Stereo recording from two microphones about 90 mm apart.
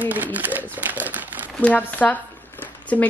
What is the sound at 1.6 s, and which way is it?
Speech, 20° left (ahead or behind).